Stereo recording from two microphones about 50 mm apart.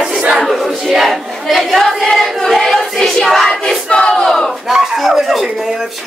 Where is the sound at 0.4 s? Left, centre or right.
Centre.